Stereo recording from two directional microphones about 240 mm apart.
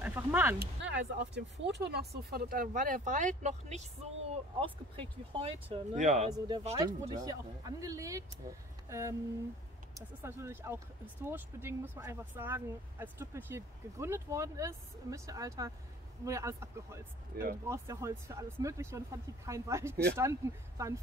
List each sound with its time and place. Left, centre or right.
0.0 s speech: centre
0.6 s speech: right
6.3 s speech: centre
7.1 s speech: centre
17.3 s speech: right
17.6 s speech: centre